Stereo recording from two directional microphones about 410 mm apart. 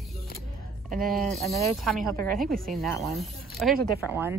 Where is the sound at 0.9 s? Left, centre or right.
Centre.